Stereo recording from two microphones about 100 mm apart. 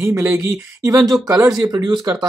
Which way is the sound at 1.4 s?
40° right (ahead or behind).